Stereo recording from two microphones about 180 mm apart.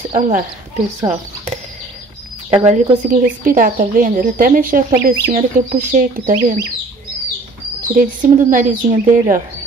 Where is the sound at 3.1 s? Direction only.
50° right (ahead or behind).